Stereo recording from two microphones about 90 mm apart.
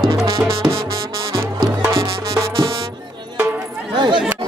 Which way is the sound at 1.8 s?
35° right (ahead or behind).